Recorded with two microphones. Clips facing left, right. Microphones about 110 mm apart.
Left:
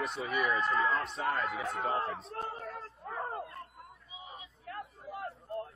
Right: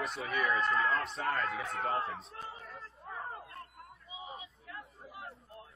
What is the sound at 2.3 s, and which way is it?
Speech, 65° left (ahead or behind).